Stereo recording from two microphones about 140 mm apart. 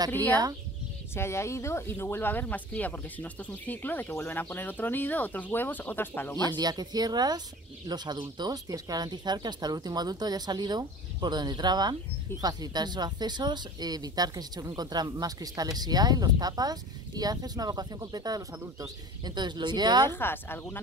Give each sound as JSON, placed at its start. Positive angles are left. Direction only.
{"t": 0.1, "sound": "speech", "side_deg": 10}
{"t": 6.3, "sound": "speech", "side_deg": -30}
{"t": 20.1, "sound": "speech", "side_deg": 15}